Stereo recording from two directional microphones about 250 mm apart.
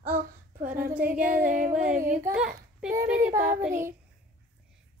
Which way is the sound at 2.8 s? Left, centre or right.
Centre.